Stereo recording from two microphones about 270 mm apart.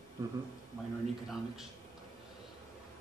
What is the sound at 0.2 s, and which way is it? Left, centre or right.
Speech, centre.